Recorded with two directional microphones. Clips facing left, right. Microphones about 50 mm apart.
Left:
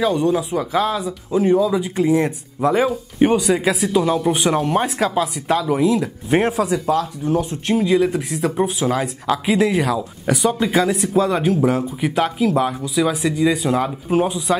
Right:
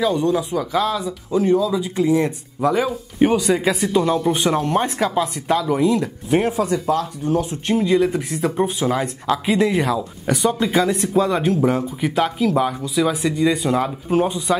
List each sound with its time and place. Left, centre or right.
0.0 s speech: centre
1.6 s speech: left
2.9 s speech: centre